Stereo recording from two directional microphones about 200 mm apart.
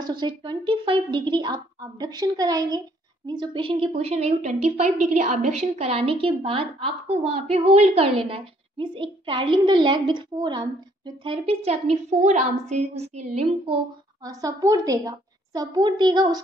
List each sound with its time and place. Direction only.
0.0 s a woman's voice: 20° right (ahead or behind)
14.2 s a woman's voice: 15° right (ahead or behind)